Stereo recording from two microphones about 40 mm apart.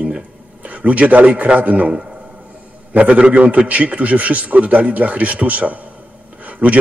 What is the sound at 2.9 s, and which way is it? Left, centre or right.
A man's voice, right.